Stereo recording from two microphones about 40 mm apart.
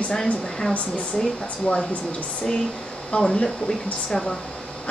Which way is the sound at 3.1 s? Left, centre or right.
Left.